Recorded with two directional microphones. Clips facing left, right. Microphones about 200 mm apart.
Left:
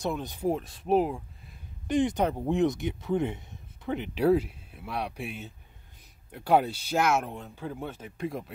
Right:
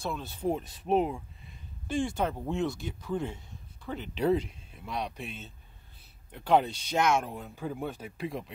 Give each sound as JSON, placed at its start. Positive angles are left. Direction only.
{"t": 0.0, "sound": "speech", "side_deg": 15}
{"t": 0.5, "sound": "speech", "side_deg": 0}
{"t": 1.9, "sound": "speech", "side_deg": 20}
{"t": 4.0, "sound": "speech", "side_deg": 10}
{"t": 7.3, "sound": "speech", "side_deg": -10}
{"t": 8.2, "sound": "speech", "side_deg": 0}